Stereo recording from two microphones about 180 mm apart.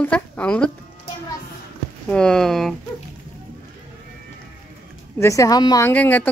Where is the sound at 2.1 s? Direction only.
5° left (ahead or behind).